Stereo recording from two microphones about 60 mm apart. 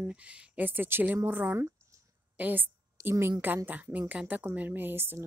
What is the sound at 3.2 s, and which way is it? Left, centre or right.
A woman's voice, right.